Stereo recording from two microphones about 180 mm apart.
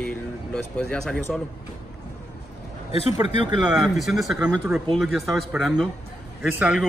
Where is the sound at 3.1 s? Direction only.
25° right (ahead or behind).